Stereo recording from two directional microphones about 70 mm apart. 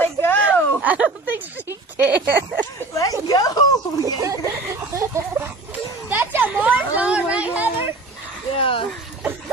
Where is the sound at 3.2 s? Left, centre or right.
Left.